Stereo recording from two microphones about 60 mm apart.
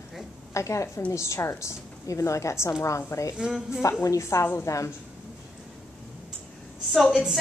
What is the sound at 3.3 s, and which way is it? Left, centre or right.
Speech, centre.